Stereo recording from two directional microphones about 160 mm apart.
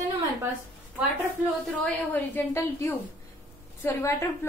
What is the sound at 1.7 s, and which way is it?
A woman's voice, 10° left (ahead or behind).